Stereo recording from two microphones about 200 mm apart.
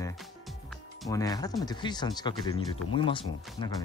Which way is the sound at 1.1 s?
15° left (ahead or behind).